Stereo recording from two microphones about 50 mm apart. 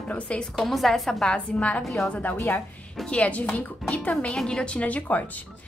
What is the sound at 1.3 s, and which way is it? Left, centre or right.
Speech, left.